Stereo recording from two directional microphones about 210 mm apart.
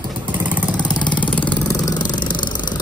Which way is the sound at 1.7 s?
15° left (ahead or behind).